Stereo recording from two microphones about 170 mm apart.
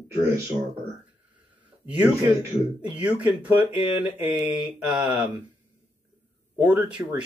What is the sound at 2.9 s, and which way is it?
Speech, 10° right (ahead or behind).